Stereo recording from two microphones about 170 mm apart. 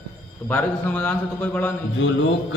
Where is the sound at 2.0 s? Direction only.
90° left.